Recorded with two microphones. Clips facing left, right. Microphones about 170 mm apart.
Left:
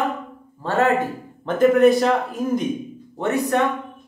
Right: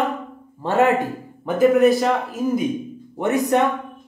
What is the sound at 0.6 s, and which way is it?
Speech, 20° right (ahead or behind).